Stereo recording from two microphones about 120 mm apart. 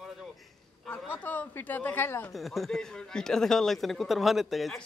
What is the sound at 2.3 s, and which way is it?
A man's voice, centre (ahead or behind).